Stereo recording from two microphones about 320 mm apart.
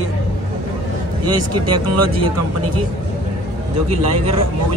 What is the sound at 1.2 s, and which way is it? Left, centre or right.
Speech, right.